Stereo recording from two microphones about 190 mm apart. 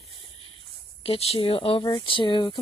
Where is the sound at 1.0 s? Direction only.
30° left (ahead or behind).